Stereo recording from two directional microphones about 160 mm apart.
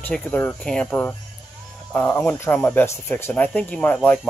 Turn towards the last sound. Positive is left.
turn(degrees=5)  # may be behind; listen again after turning